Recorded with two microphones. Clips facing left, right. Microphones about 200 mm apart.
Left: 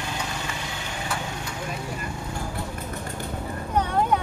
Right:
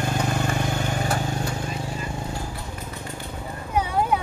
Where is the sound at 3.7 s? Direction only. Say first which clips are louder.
Even; 5° right (ahead or behind).